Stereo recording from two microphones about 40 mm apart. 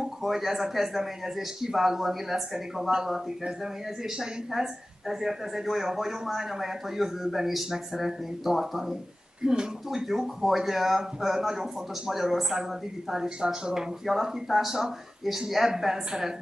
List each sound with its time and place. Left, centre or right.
0.2 s speech: centre
9.4 s speech: centre